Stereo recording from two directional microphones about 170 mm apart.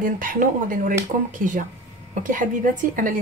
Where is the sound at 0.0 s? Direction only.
55° right (ahead or behind).